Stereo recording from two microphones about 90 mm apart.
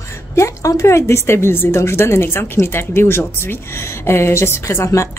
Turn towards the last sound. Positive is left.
turn(degrees=35)  # may be behind; listen again after turning